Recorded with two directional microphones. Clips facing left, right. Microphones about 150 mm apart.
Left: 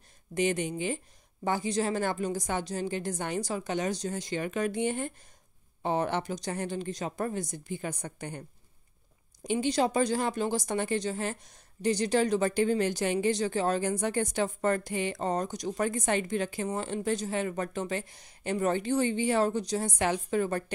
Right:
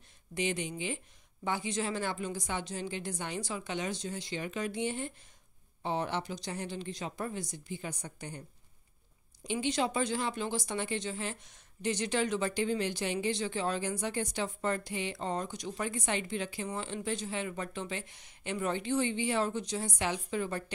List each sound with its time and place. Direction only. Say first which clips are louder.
0.3 s speech: left 6 dB; 50° left (ahead or behind)
9.4 s speech: left 5 dB; 45° left (ahead or behind)